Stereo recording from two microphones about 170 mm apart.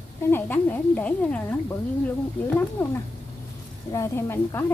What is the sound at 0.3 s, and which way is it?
Speech, 10° left (ahead or behind).